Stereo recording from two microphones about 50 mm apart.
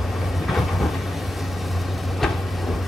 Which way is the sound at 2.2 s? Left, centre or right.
Centre.